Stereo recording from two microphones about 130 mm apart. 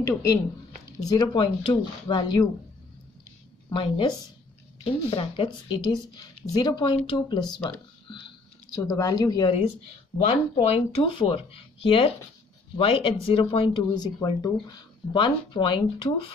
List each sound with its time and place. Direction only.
0.0 s speech: 25° left (ahead or behind)
3.7 s speech: 40° left (ahead or behind)
5.1 s speech: 45° left (ahead or behind)
8.7 s speech: 25° left (ahead or behind)
10.2 s speech: 55° left (ahead or behind)
11.0 s speech: 40° left (ahead or behind)